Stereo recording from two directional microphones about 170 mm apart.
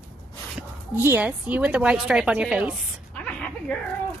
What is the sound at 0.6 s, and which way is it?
Speech, 10° right (ahead or behind).